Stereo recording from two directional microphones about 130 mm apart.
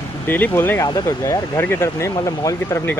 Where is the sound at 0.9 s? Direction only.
30° left (ahead or behind).